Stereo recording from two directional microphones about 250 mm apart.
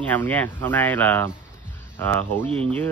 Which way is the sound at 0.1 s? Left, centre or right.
Centre.